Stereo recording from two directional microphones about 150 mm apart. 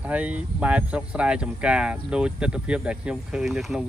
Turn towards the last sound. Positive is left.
turn(degrees=0)  # may be behind; listen again after turning